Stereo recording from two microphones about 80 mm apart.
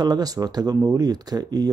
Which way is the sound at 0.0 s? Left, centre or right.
Right.